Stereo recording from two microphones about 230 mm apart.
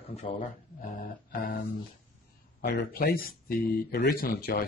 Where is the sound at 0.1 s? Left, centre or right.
Left.